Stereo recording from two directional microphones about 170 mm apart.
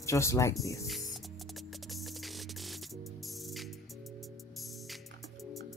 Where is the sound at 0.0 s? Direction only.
15° left (ahead or behind).